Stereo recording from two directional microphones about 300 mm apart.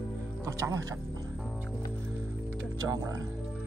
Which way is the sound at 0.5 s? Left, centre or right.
Centre.